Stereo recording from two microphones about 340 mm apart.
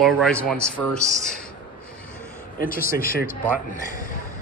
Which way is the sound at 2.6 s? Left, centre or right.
Left.